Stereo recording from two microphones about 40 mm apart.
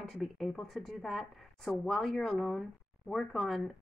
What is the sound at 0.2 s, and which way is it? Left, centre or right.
A woman's voice, centre.